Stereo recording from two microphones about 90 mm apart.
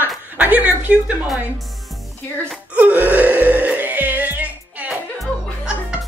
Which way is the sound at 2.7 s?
15° right (ahead or behind).